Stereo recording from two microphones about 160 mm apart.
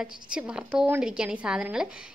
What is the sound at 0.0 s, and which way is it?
A woman's voice, 5° right (ahead or behind).